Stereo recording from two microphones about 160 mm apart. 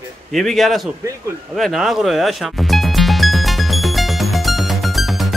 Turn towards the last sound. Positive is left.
turn(degrees=0)  # may be behind; listen again after turning